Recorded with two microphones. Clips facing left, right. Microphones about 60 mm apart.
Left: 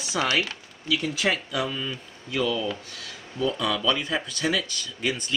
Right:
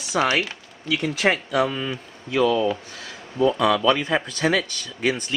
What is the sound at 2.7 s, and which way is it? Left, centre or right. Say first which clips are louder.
Speech: right 6 dB; right.